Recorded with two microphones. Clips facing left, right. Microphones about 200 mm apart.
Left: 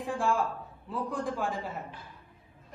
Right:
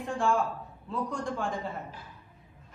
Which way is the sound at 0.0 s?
Centre (ahead or behind).